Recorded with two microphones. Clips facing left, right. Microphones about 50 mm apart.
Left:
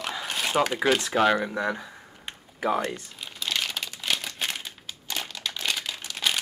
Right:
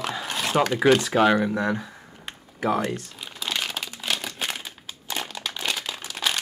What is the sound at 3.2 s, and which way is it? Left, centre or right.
Crumpling, centre.